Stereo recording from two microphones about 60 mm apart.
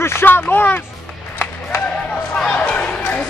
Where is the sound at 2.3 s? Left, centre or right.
Centre.